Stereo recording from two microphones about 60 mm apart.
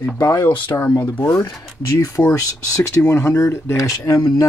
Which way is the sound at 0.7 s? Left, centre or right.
Left.